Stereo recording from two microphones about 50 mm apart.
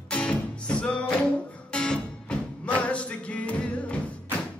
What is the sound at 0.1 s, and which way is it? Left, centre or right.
Music, left.